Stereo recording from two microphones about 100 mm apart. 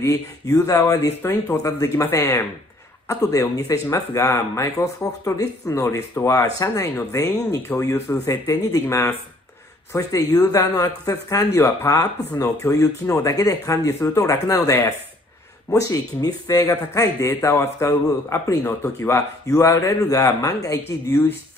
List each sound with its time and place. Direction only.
0.0 s a man's voice: 30° left (ahead or behind)
8.3 s a man's voice: 35° left (ahead or behind)
9.9 s a man's voice: 35° left (ahead or behind)
21.1 s speech: 20° left (ahead or behind)